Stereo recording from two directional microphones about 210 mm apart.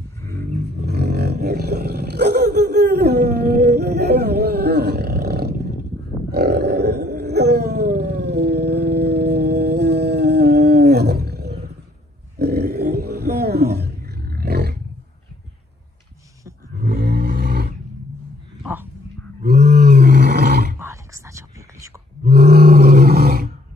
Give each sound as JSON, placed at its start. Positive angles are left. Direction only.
{"t": 0.3, "sound": "roaring cats", "side_deg": -45}
{"t": 0.8, "sound": "roar", "side_deg": -50}
{"t": 6.3, "sound": "wild animals", "side_deg": -50}
{"t": 12.4, "sound": "roaring cats", "side_deg": -50}
{"t": 16.7, "sound": "roar", "side_deg": -50}
{"t": 18.6, "sound": "a sound", "side_deg": -10}
{"t": 19.4, "sound": "roar", "side_deg": -50}
{"t": 20.8, "sound": "whispering", "side_deg": -15}
{"t": 22.2, "sound": "roar", "side_deg": -50}